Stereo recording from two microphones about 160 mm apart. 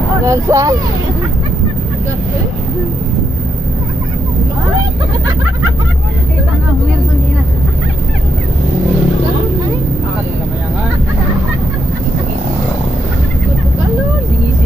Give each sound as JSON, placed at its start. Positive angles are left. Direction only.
{"t": 0.2, "sound": "speech", "side_deg": -20}